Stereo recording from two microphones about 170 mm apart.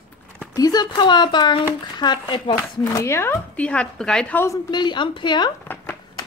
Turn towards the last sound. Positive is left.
turn(degrees=25)  # may be behind; listen again after turning